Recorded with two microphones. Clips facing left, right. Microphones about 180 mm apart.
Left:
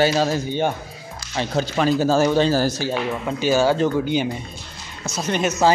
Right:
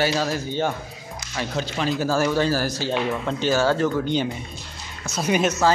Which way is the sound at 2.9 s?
10° left (ahead or behind).